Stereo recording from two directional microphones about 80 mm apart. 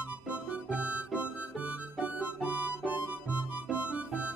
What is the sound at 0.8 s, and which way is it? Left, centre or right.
Harmonica, centre.